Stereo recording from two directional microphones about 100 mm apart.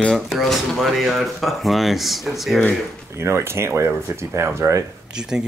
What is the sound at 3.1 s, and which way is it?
Speech, 25° right (ahead or behind).